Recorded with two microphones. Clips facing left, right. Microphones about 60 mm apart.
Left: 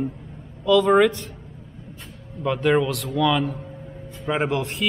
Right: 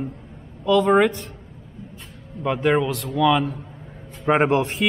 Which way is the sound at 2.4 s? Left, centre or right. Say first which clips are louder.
Even; centre.